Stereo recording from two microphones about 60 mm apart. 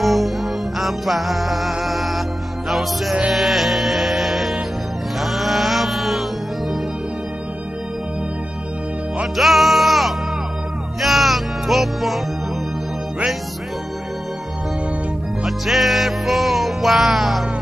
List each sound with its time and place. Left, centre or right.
0.0 s music: centre
5.2 s mantra: centre
9.4 s music: centre
15.4 s music: centre